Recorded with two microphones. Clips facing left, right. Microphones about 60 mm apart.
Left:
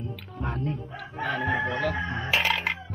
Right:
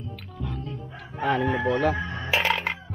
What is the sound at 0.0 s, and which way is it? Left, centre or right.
Music, left.